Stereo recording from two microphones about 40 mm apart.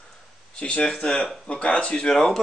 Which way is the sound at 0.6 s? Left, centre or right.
Left.